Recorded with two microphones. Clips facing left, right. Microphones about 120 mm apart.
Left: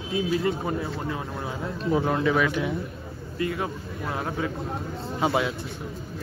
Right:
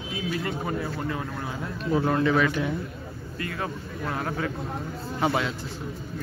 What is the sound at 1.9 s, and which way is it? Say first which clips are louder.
Speech: even; 15° left (ahead or behind).